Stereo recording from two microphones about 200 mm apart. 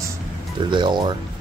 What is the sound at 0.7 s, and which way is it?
Speech, 25° right (ahead or behind).